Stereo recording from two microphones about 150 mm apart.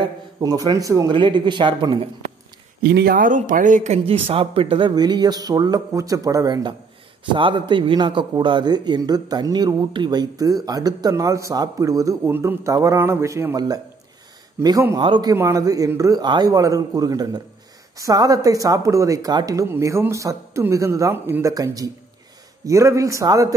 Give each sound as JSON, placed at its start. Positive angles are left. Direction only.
{"t": 0.4, "sound": "a man's voice", "side_deg": -25}
{"t": 2.8, "sound": "a man's voice", "side_deg": -90}
{"t": 15.0, "sound": "speech", "side_deg": -30}
{"t": 15.3, "sound": "a man's voice", "side_deg": -20}